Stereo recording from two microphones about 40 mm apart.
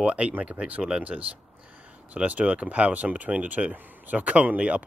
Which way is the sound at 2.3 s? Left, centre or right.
Right.